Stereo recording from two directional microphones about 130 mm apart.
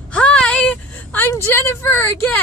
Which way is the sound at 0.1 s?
10° left (ahead or behind).